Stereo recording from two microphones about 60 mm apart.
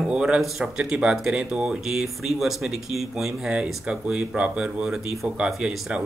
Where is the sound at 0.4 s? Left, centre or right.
Centre.